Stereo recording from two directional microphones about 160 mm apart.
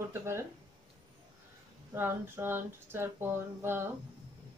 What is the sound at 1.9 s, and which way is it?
Speech, 15° right (ahead or behind).